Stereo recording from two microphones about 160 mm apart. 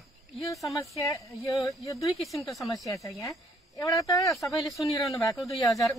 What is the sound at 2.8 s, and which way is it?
Speech, 20° left (ahead or behind).